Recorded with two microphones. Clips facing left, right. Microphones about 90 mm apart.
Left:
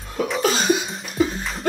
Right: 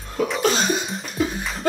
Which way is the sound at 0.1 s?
Centre (ahead or behind).